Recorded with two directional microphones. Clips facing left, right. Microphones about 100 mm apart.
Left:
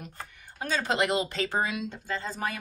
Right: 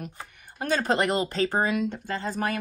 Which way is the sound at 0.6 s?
50° right (ahead or behind).